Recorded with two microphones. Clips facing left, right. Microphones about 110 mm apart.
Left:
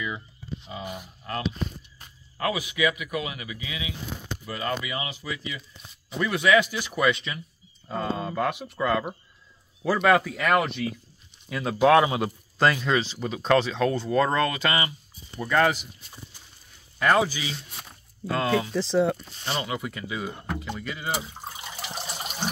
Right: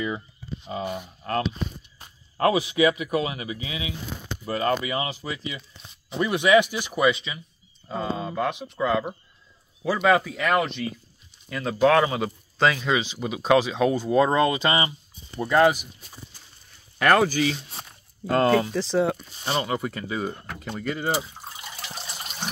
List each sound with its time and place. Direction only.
0.7 s a man's voice: 35° right (ahead or behind); by 8.5 s 5° right (ahead or behind)
8.5 s speech: 5° left (ahead or behind)
8.7 s speech: 5° right (ahead or behind)
17.0 s speech: 60° right (ahead or behind); by 18.7 s 45° right (ahead or behind)
18.7 s speech: centre (ahead or behind)
19.5 s a man's voice: 40° right (ahead or behind)
21.9 s water: 15° left (ahead or behind)